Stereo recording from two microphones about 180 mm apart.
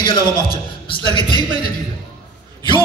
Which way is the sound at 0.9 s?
25° left (ahead or behind).